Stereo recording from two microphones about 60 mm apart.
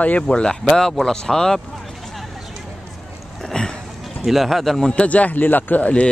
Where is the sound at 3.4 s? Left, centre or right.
Centre.